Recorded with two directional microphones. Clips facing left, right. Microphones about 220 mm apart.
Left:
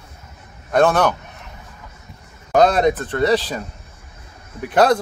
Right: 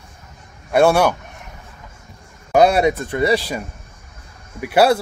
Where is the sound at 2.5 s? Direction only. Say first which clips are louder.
Right 1 dB; 10° right (ahead or behind).